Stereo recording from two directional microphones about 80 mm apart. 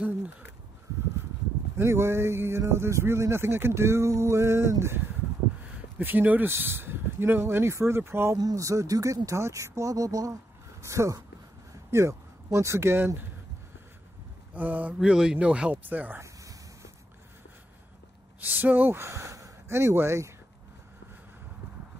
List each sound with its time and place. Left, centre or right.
0.0 s a sound: centre
1.8 s speech: right
5.9 s speech: right
8.4 s speech: right
14.5 s speech: right
15.0 s speech: centre
16.2 s a sound: right
18.4 s speech: right